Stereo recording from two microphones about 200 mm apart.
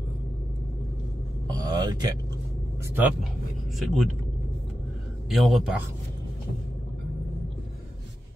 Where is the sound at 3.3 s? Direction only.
Centre (ahead or behind).